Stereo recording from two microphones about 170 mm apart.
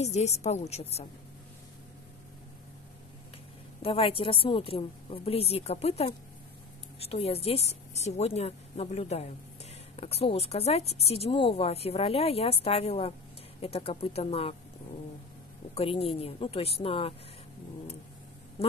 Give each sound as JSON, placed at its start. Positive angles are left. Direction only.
{"t": 0.0, "sound": "speech", "side_deg": 40}
{"t": 3.8, "sound": "speech", "side_deg": 35}
{"t": 15.7, "sound": "speech", "side_deg": 35}